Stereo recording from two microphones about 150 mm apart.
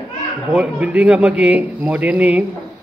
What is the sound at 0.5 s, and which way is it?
Speech, 10° right (ahead or behind).